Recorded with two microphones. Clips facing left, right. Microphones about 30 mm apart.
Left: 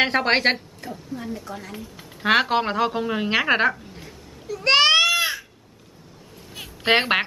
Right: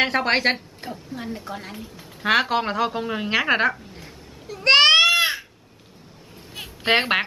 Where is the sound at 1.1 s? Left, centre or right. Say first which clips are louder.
Even; right.